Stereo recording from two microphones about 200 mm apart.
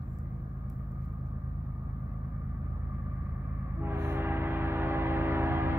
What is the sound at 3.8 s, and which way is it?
Train, 10° right (ahead or behind).